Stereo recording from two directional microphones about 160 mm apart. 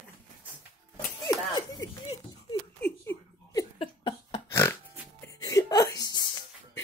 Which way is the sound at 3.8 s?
35° left (ahead or behind).